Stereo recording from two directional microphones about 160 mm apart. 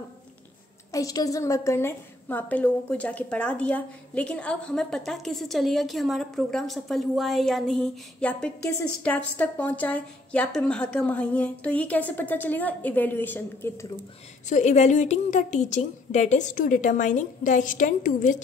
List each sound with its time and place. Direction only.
0.9 s a woman's voice: 20° left (ahead or behind)
14.5 s a woman's voice: 45° left (ahead or behind)